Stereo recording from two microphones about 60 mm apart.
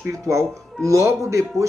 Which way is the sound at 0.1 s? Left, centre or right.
Right.